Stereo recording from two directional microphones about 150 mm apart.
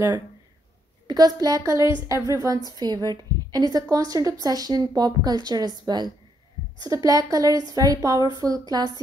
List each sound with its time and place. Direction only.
1.0 s a woman's voice: 25° right (ahead or behind)